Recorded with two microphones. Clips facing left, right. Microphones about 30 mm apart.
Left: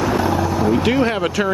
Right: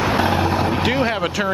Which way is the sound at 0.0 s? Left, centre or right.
Right.